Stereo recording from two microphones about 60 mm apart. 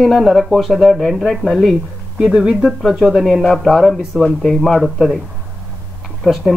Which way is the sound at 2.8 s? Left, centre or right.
Centre.